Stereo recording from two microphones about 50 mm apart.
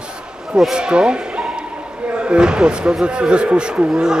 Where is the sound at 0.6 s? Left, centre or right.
Centre.